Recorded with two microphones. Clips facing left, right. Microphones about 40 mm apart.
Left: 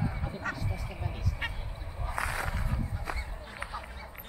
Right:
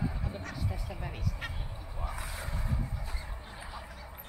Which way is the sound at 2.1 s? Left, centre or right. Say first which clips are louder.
Left 8 dB; left.